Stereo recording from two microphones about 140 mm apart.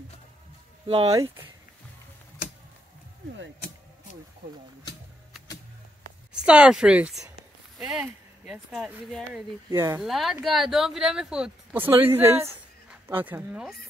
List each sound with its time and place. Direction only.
0.8 s speech: 40° right (ahead or behind)
6.4 s speech: 5° right (ahead or behind)
9.7 s speech: 20° right (ahead or behind)
10.0 s speech: centre (ahead or behind)
11.8 s speech: 15° right (ahead or behind)